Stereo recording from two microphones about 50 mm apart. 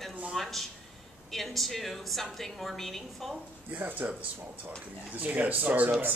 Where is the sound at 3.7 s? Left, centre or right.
Right.